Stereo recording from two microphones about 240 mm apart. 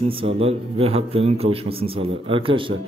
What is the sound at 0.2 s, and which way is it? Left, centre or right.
A man's voice, right.